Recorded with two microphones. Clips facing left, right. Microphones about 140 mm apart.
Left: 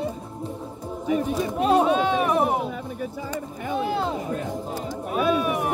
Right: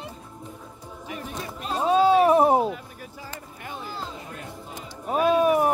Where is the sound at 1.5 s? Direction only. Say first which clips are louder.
Left 8 dB; 65° left (ahead or behind).